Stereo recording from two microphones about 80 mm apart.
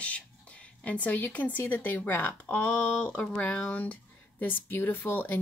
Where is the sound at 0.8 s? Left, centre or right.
Centre.